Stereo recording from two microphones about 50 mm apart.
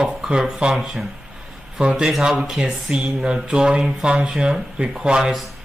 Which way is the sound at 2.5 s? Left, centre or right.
Right.